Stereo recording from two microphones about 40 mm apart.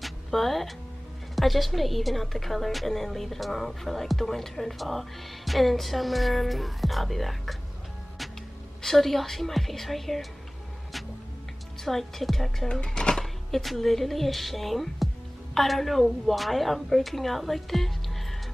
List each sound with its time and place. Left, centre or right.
0.0 s music: centre
1.3 s speech: centre
8.8 s speech: centre
11.8 s a woman's voice: centre
12.8 s a child's voice: left
13.2 s speech: centre